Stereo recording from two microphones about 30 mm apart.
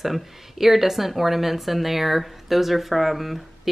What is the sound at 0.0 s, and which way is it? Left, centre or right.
Speech, centre.